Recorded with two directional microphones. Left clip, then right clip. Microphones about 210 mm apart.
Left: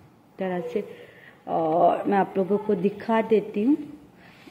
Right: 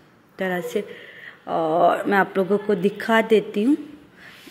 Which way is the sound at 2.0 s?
5° left (ahead or behind).